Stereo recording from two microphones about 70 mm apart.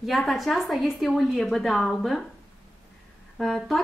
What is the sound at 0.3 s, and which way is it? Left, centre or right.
A woman's voice, centre.